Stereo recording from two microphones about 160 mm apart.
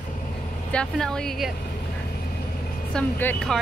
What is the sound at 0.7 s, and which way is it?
Speech, 5° left (ahead or behind).